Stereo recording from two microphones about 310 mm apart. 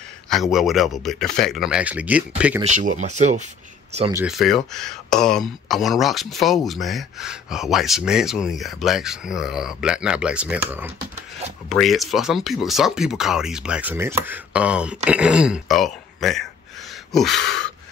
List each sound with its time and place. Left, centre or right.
0.3 s speech: centre
2.6 s speech: right
4.2 s speech: centre